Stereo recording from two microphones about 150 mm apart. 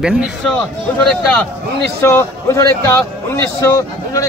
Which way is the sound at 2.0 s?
20° left (ahead or behind).